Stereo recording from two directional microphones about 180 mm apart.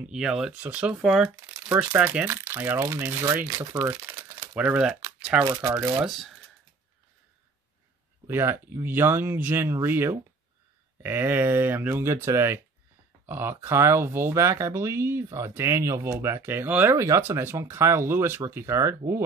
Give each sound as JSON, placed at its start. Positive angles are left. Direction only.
{"t": 0.0, "sound": "speech", "side_deg": -5}
{"t": 6.0, "sound": "speech", "side_deg": 0}
{"t": 8.3, "sound": "speech", "side_deg": -15}